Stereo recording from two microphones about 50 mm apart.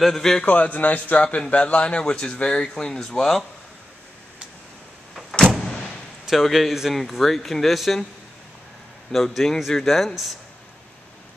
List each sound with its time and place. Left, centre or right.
0.0 s a man's voice: centre
0.4 s speech: left; by 3.3 s centre
5.4 s a sound: centre
6.2 s speech: centre
9.1 s speech: centre